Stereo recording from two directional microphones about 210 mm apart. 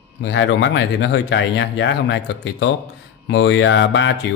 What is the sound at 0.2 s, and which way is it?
Speech, 60° left (ahead or behind).